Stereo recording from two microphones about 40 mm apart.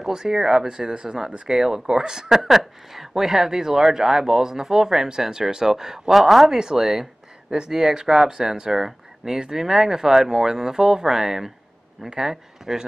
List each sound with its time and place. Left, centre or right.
0.0 s speech: centre